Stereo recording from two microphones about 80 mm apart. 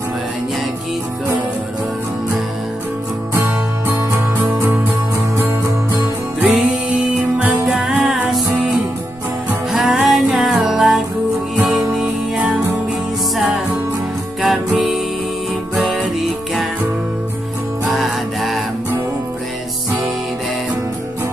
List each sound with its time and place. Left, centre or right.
3.3 s music: right
6.4 s music: centre
14.4 s music: centre
17.8 s music: centre